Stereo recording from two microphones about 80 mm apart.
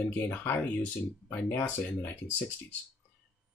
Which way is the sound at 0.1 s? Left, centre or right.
Left.